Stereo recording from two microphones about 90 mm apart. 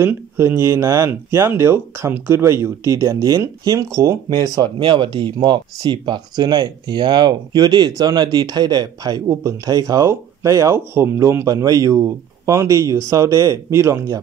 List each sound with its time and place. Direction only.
0.0 s speech: 25° right (ahead or behind); by 4.5 s 40° right (ahead or behind)
4.6 s speech: 60° right (ahead or behind); by 14.2 s 35° right (ahead or behind)